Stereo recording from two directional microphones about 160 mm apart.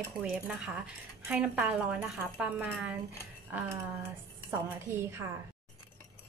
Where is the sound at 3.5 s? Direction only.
10° right (ahead or behind).